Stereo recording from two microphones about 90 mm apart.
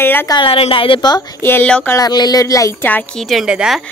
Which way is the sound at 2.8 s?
20° left (ahead or behind).